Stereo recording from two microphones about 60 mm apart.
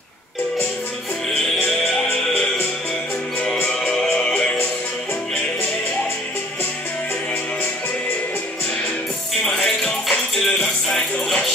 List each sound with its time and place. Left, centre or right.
3.6 s music: centre
9.4 s music: centre